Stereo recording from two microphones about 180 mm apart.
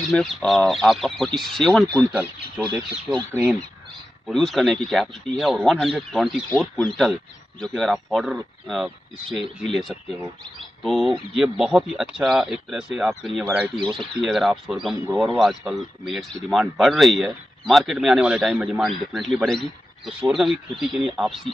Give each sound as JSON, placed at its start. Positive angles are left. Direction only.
{"t": 0.1, "sound": "speech", "side_deg": 5}
{"t": 4.3, "sound": "speech", "side_deg": 0}
{"t": 13.7, "sound": "speech", "side_deg": -25}
{"t": 14.2, "sound": "speech", "side_deg": 0}